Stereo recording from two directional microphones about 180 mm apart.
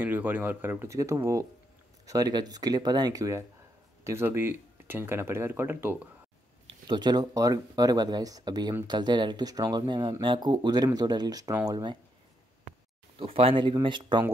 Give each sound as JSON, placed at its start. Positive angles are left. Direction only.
{"t": 0.0, "sound": "speech", "side_deg": -10}
{"t": 6.7, "sound": "speech", "side_deg": -25}
{"t": 13.2, "sound": "speech", "side_deg": -30}